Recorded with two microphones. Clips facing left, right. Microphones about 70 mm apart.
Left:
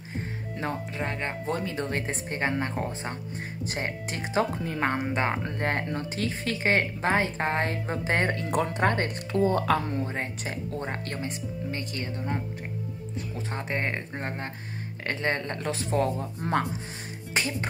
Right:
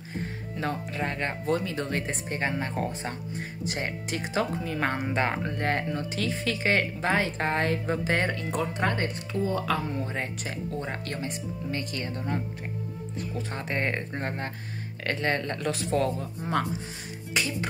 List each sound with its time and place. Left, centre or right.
0.6 s speech: left
3.6 s speech: left
4.7 s speech: left
8.5 s speech: left
10.0 s speech: left
13.4 s speech: left
13.8 s speech: centre
15.0 s speech: left
17.3 s speech: left